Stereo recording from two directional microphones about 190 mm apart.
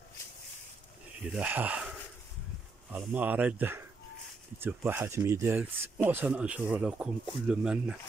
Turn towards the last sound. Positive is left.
turn(degrees=-5)  # may be behind; listen again after turning